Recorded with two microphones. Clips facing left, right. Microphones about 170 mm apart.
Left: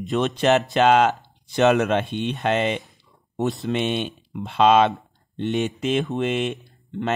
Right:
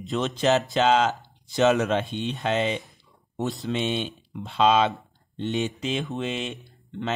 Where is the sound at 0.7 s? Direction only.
60° left (ahead or behind).